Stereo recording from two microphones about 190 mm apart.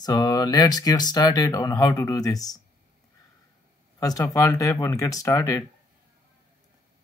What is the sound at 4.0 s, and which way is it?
Speech, 20° left (ahead or behind).